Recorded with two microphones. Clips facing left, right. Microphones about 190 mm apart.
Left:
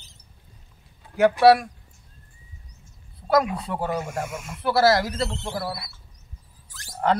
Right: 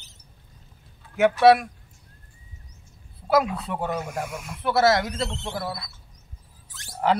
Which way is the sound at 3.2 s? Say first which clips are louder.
Left 1 dB; 5° right (ahead or behind).